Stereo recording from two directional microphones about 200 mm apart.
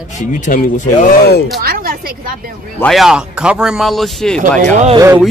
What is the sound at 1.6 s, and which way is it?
Speech, 50° right (ahead or behind).